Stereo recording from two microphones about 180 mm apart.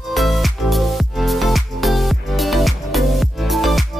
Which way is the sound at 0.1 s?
Centre (ahead or behind).